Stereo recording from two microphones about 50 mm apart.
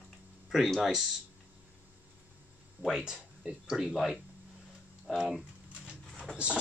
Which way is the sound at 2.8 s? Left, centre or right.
Centre.